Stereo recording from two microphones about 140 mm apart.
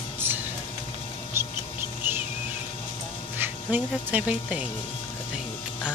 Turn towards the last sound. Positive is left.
turn(degrees=-10)  # may be behind; listen again after turning